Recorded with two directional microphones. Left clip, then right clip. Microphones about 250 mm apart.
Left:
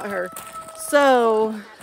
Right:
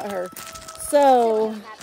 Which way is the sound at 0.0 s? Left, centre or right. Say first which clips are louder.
Left 1 dB; centre.